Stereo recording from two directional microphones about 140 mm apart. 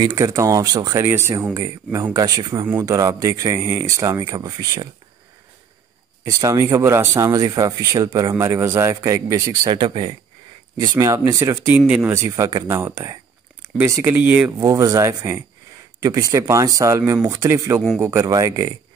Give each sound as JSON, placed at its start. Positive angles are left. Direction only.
{"t": 0.0, "sound": "speech", "side_deg": -25}
{"t": 6.2, "sound": "speech", "side_deg": -25}
{"t": 10.8, "sound": "speech", "side_deg": -25}
{"t": 11.6, "sound": "speech", "side_deg": -10}
{"t": 12.2, "sound": "speech", "side_deg": -25}
{"t": 14.6, "sound": "speech", "side_deg": -25}